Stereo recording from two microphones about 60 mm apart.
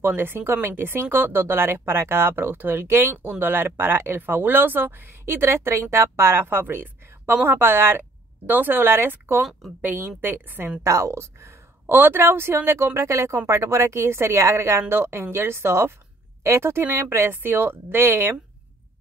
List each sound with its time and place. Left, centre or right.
0.0 s speech: right
10.8 s a woman's voice: right